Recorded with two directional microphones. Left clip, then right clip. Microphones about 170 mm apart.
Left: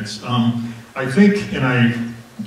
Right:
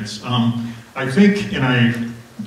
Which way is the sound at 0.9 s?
15° right (ahead or behind).